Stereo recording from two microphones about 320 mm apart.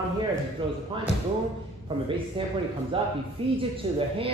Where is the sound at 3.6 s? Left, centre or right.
Centre.